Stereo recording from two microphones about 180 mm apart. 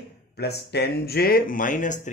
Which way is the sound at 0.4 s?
65° left (ahead or behind).